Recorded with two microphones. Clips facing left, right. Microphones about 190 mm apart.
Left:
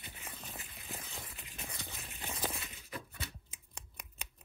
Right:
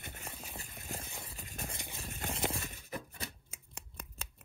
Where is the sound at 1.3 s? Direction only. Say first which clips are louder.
Right 4 dB; 35° right (ahead or behind).